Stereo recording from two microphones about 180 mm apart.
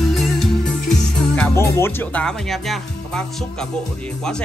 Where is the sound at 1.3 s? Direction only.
10° left (ahead or behind).